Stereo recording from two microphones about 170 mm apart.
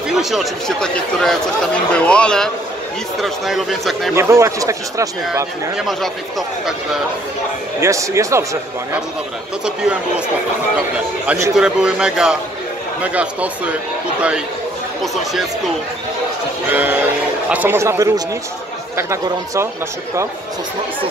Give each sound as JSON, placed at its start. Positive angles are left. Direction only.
{"t": 0.1, "sound": "speech", "side_deg": 0}
{"t": 4.1, "sound": "a man's voice", "side_deg": -15}
{"t": 7.8, "sound": "a man's voice", "side_deg": -15}
{"t": 9.8, "sound": "a man's voice", "side_deg": -5}
{"t": 11.2, "sound": "a man's voice", "side_deg": -15}
{"t": 11.5, "sound": "a man's voice", "side_deg": -5}
{"t": 16.7, "sound": "a man's voice", "side_deg": -10}